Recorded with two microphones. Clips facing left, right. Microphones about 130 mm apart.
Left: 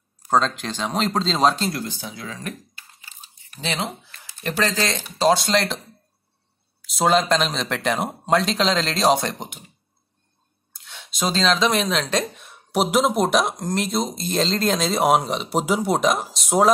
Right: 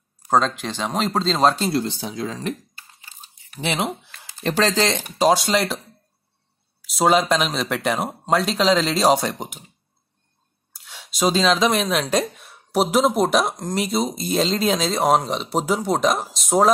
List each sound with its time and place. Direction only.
0.3 s speech: 5° right (ahead or behind)
1.7 s speech: 25° right (ahead or behind)
3.5 s speech: 20° right (ahead or behind)
5.2 s speech: 10° right (ahead or behind)
6.8 s speech: 5° right (ahead or behind)
10.7 s speech: 5° right (ahead or behind)